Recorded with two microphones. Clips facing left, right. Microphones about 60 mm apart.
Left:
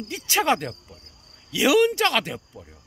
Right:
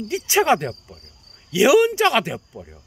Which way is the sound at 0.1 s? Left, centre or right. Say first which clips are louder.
Right 5 dB; centre.